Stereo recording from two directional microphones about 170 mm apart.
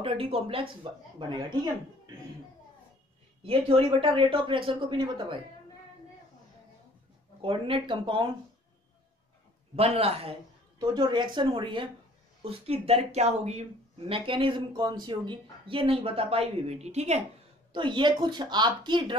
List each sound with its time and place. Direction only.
0.0 s speech: 35° right (ahead or behind)
3.4 s speech: 35° right (ahead or behind)
7.4 s speech: 30° right (ahead or behind)
9.8 s speech: 35° right (ahead or behind)
10.8 s speech: 25° right (ahead or behind); by 17.2 s 40° right (ahead or behind)
17.7 s speech: 30° right (ahead or behind)